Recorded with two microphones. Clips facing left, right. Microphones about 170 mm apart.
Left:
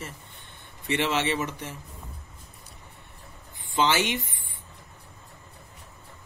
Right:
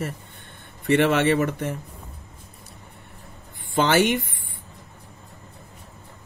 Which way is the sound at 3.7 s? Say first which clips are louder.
Right 5 dB; 55° right (ahead or behind).